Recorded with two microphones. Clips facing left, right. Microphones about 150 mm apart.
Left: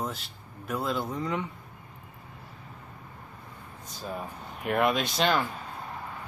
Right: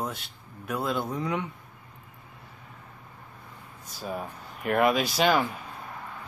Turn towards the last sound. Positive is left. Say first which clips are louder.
# right 3 dB
turn(degrees=-5)  # may be behind; listen again after turning